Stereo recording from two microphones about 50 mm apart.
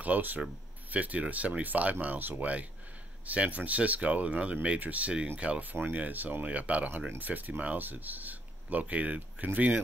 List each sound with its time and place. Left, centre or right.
0.0 s speech: right